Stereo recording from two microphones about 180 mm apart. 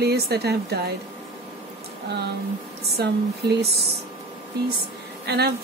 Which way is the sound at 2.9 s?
65° right (ahead or behind).